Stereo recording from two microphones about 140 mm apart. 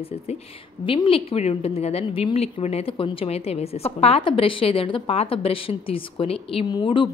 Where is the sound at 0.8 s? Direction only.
40° left (ahead or behind).